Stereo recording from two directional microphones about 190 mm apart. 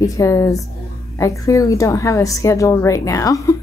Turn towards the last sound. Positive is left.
turn(degrees=15)  # may be behind; listen again after turning